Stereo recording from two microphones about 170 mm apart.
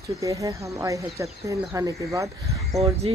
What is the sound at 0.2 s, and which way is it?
Speech, 20° right (ahead or behind).